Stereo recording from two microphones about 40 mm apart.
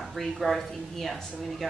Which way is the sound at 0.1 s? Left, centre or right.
Centre.